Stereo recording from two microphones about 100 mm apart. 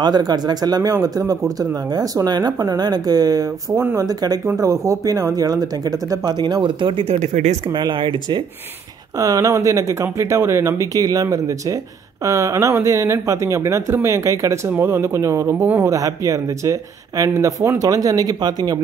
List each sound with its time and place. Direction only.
0.0 s speech: 45° right (ahead or behind)
9.2 s speech: 35° right (ahead or behind)
15.9 s speech: 35° right (ahead or behind)